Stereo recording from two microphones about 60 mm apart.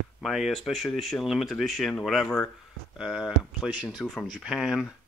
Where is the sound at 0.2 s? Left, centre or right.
Centre.